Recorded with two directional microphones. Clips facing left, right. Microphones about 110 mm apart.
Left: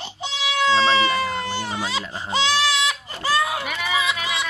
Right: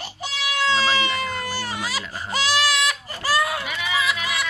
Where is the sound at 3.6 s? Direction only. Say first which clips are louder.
Left 2 dB; 45° left (ahead or behind).